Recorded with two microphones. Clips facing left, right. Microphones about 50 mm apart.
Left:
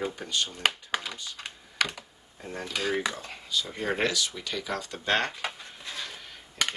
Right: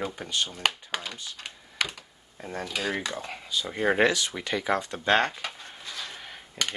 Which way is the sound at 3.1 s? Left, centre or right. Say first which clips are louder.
Right 1 dB; right.